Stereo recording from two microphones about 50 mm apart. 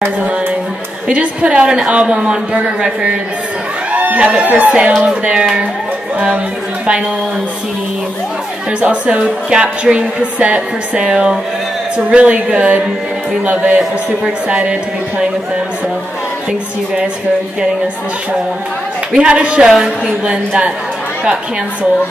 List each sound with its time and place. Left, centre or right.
1.0 s a woman's voice: right
6.1 s speech: right
8.8 s a woman's voice: right
19.1 s a woman's voice: right